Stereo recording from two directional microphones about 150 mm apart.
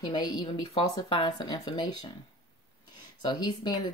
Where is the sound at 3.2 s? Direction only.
30° left (ahead or behind).